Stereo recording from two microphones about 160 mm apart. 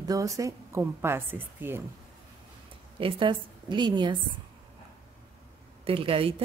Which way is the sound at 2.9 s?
35° right (ahead or behind).